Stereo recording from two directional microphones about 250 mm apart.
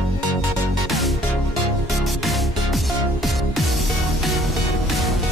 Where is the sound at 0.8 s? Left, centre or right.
Centre.